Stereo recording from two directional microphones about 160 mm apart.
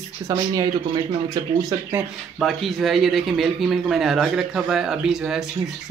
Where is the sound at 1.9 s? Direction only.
5° right (ahead or behind).